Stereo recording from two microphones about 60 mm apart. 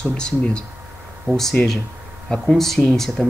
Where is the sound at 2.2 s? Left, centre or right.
Centre.